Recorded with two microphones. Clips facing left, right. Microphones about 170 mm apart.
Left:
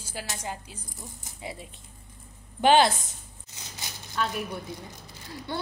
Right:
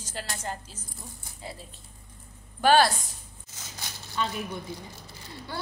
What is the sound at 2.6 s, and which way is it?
Speech, 20° left (ahead or behind).